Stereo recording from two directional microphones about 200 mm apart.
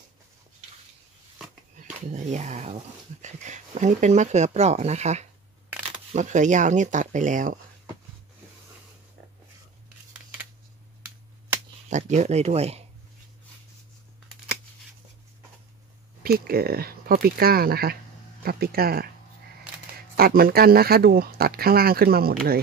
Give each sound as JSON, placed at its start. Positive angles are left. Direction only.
{"t": 1.8, "sound": "speech", "side_deg": -35}
{"t": 11.9, "sound": "speech", "side_deg": -35}
{"t": 16.2, "sound": "speech", "side_deg": -50}
{"t": 20.2, "sound": "speech", "side_deg": -45}